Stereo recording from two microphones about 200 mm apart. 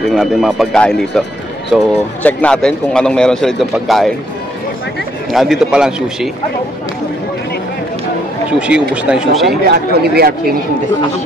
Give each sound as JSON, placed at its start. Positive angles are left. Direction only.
{"t": 0.1, "sound": "a man's voice", "side_deg": 0}
{"t": 5.3, "sound": "a man's voice", "side_deg": 0}
{"t": 8.5, "sound": "a man's voice", "side_deg": -5}
{"t": 9.7, "sound": "speech", "side_deg": -50}